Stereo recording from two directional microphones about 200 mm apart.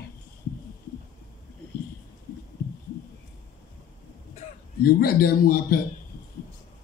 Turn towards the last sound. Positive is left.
turn(degrees=50)  # may be behind; listen again after turning